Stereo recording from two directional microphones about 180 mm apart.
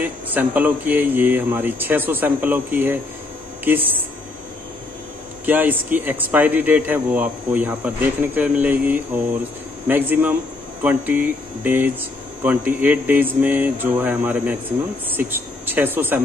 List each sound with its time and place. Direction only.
0.0 s speech: 10° right (ahead or behind)
5.4 s speech: 10° right (ahead or behind)